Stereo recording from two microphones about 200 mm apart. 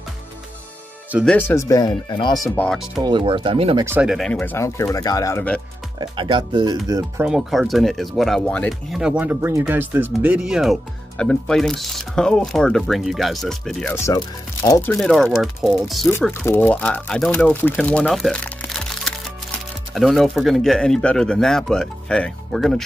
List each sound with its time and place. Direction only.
1.2 s speech: 10° left (ahead or behind)
2.6 s speech: centre (ahead or behind)
3.0 s speech: 25° right (ahead or behind)
3.8 s speech: 10° right (ahead or behind); by 5.6 s 10° left (ahead or behind)
5.9 s speech: 25° right (ahead or behind)
7.2 s speech: centre (ahead or behind)
13.9 s speech: 15° left (ahead or behind)
14.9 s speech: centre (ahead or behind)
16.1 s speech: 10° left (ahead or behind)